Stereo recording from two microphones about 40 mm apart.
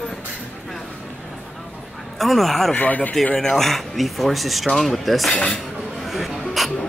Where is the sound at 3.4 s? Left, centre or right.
Centre.